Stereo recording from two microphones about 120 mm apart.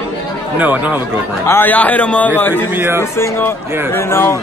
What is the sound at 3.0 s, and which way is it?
Speech, 20° left (ahead or behind).